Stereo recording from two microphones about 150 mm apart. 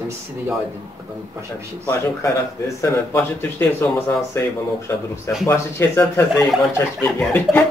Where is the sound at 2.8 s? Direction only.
15° left (ahead or behind).